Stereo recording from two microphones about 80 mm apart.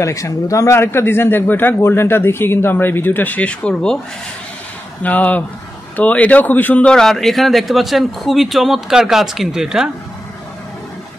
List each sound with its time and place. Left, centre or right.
0.0 s speech: left
0.7 s a man's voice: left; by 4.0 s centre
5.0 s a man's voice: centre